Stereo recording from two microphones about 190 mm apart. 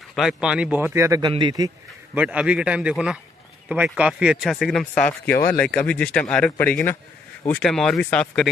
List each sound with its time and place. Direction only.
0.1 s a man's voice: centre (ahead or behind); by 1.7 s 20° right (ahead or behind)
2.1 s speech: 5° right (ahead or behind)